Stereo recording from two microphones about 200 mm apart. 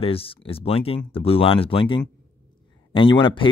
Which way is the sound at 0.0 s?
30° left (ahead or behind).